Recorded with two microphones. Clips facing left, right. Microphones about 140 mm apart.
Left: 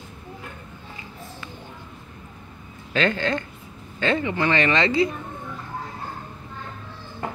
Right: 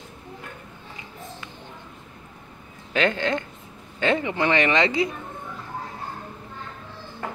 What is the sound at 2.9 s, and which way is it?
Speech, 15° right (ahead or behind).